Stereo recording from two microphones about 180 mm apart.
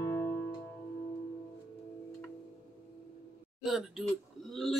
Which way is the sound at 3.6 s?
Centre (ahead or behind).